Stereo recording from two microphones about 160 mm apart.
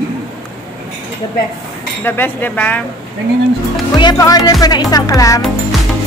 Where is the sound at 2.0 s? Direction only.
10° left (ahead or behind).